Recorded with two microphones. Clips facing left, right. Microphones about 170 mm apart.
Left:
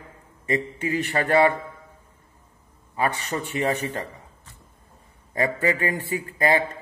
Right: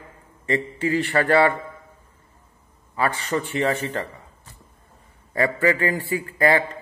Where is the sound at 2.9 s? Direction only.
20° left (ahead or behind).